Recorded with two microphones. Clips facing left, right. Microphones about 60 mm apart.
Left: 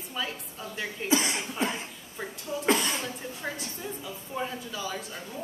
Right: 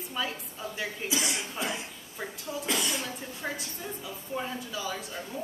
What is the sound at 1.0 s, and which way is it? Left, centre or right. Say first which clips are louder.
Speech: left 7 dB; left.